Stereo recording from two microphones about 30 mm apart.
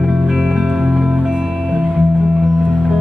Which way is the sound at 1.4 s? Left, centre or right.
Right.